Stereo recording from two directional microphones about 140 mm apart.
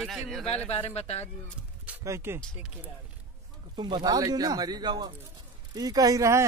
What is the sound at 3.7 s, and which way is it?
Speech, 30° right (ahead or behind).